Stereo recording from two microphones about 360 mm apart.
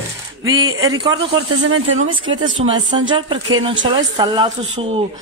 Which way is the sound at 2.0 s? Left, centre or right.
Centre.